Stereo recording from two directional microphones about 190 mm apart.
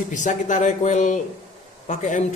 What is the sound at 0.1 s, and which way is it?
A man's voice, 40° left (ahead or behind).